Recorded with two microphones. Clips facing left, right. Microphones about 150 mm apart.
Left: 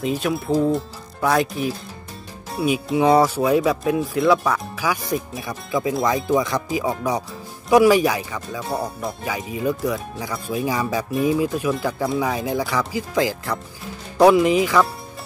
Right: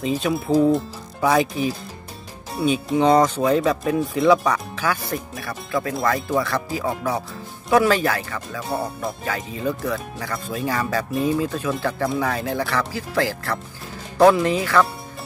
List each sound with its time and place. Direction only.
0.0 s speech: centre (ahead or behind)
8.5 s speech: centre (ahead or behind)
9.2 s speech: 10° left (ahead or behind)